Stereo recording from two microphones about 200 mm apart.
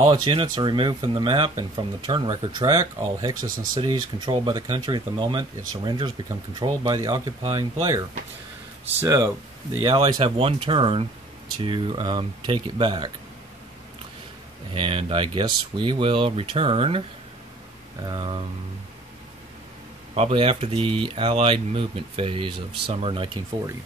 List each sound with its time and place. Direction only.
0.0 s speech: 20° right (ahead or behind)
9.0 s speech: 20° right (ahead or behind)
14.7 s speech: 25° right (ahead or behind)
18.0 s speech: 25° right (ahead or behind)
20.2 s speech: 30° right (ahead or behind)